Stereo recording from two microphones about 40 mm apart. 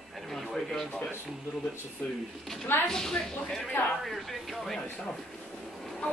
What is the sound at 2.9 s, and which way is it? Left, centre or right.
Speech, centre.